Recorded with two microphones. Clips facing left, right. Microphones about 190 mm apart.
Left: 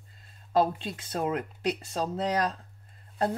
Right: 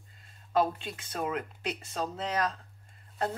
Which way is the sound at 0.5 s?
35° left (ahead or behind).